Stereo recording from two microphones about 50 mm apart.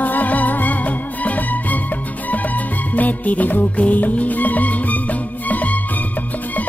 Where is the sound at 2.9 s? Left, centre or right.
Left.